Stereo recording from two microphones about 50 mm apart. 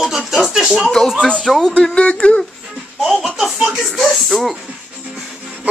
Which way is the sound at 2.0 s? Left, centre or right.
Left.